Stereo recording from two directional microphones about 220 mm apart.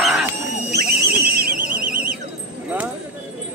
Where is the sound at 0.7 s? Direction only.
45° right (ahead or behind).